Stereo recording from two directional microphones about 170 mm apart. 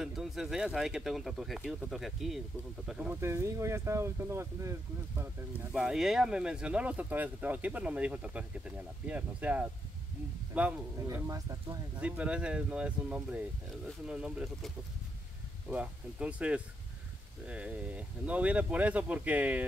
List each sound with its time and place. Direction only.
0.0 s speech: centre (ahead or behind)
5.7 s a man's voice: 5° right (ahead or behind)
11.1 s speech: 20° right (ahead or behind)
12.0 s speech: 5° right (ahead or behind)
15.7 s speech: 10° right (ahead or behind)